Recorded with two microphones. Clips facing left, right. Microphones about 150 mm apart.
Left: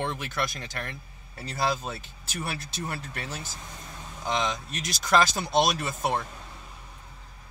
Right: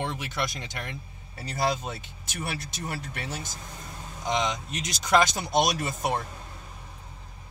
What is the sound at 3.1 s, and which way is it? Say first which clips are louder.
Speech: right 1 dB; 15° right (ahead or behind).